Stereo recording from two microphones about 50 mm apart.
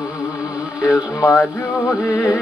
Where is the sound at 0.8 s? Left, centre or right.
Left.